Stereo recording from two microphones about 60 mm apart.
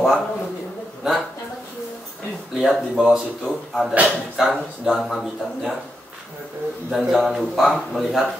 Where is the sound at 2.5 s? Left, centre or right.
Centre.